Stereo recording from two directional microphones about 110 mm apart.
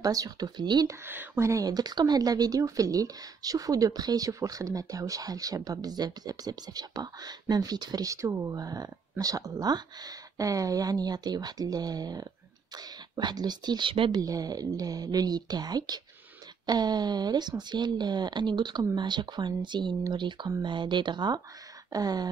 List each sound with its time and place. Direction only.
0.0 s speech: 35° right (ahead or behind)
1.0 s speech: 20° right (ahead or behind); by 14.2 s 50° right (ahead or behind)
14.2 s speech: 35° right (ahead or behind)